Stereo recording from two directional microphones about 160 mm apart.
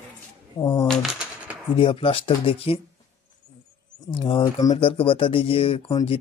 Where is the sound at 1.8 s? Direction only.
35° left (ahead or behind).